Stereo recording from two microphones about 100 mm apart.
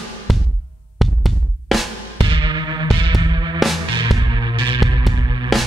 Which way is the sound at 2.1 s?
55° right (ahead or behind).